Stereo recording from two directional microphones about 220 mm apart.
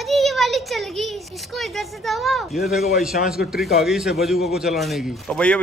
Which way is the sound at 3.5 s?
Centre (ahead or behind).